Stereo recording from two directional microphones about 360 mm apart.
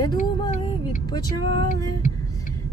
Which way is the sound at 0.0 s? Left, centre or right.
Left.